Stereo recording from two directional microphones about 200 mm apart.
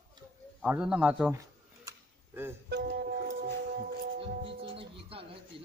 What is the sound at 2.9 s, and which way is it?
Music, 50° right (ahead or behind).